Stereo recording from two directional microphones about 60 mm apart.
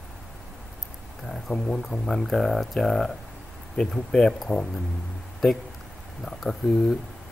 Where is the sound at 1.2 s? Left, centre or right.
Centre.